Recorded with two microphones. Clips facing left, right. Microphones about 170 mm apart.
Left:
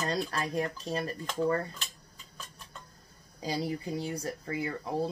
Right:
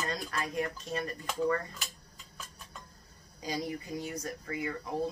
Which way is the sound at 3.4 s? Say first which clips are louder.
Left 3 dB; 30° left (ahead or behind).